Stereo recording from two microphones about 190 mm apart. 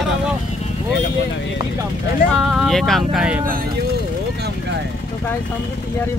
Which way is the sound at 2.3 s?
Centre (ahead or behind).